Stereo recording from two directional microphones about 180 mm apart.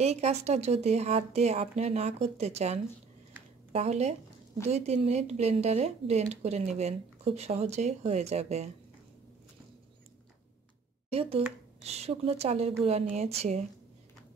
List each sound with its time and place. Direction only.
0.0 s speech: 35° right (ahead or behind)
11.1 s speech: 35° right (ahead or behind)